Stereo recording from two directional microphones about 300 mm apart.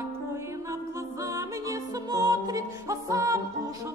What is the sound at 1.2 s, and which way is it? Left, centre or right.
Music, centre.